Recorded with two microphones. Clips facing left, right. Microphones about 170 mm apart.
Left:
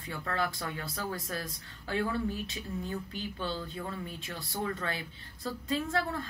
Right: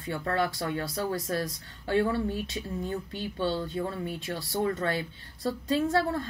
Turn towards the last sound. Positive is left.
turn(degrees=-30)  # may be behind; listen again after turning